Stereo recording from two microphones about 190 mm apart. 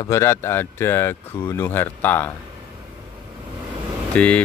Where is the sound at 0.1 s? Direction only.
15° left (ahead or behind).